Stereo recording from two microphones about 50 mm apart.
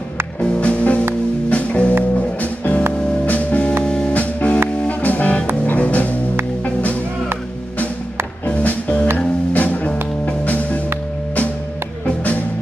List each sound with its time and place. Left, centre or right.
0.4 s music: left
8.5 s music: left